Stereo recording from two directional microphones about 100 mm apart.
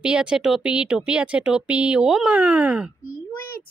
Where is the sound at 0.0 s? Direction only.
10° right (ahead or behind).